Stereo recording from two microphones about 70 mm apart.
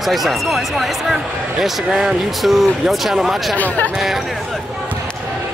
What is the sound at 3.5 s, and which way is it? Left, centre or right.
Speech, left.